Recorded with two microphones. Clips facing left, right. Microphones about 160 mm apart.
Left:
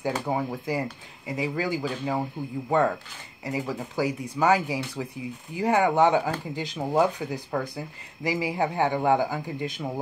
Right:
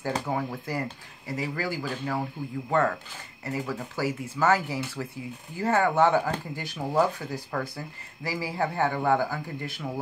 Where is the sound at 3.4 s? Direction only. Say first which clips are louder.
Left 2 dB; 15° left (ahead or behind).